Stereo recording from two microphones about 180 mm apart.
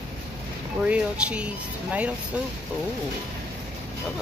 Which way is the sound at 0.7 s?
5° right (ahead or behind).